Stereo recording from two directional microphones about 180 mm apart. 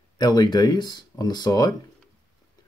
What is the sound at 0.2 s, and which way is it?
Speech, 25° left (ahead or behind).